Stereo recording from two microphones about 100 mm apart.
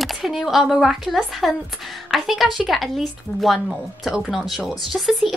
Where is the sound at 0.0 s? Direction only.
Centre (ahead or behind).